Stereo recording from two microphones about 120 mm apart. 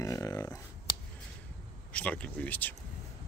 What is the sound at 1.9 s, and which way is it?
Speech, 10° left (ahead or behind).